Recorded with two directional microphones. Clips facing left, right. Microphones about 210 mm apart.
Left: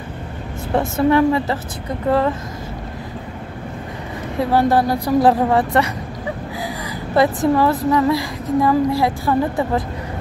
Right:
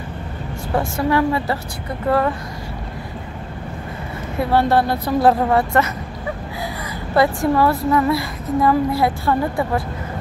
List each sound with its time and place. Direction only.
1.1 s a woman's voice: 20° left (ahead or behind)
4.4 s a woman's voice: 15° left (ahead or behind)
7.2 s a woman's voice: 20° left (ahead or behind)